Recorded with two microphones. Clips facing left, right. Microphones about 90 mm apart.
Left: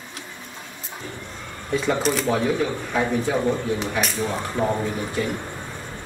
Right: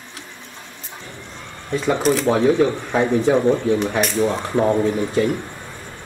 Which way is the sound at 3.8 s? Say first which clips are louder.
Right 5 dB; centre (ahead or behind).